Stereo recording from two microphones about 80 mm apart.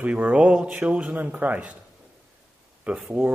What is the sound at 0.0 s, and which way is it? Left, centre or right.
Speech, centre.